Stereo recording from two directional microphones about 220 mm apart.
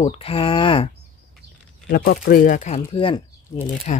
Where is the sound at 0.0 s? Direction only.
25° left (ahead or behind).